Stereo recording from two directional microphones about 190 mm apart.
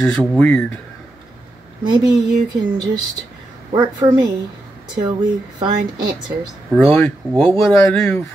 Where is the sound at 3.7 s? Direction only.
20° right (ahead or behind).